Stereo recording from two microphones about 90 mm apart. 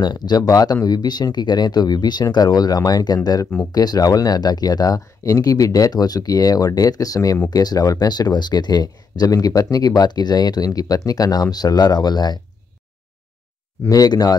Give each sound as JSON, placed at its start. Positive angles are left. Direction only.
{"t": 0.0, "sound": "speech", "side_deg": 50}
{"t": 13.8, "sound": "speech", "side_deg": 45}